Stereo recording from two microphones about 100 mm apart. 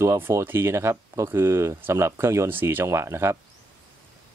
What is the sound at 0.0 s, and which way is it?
Speech, 30° right (ahead or behind).